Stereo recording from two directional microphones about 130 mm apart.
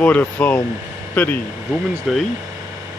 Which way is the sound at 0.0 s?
10° left (ahead or behind).